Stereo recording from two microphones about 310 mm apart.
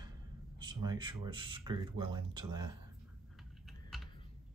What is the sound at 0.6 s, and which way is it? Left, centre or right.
Speech, centre.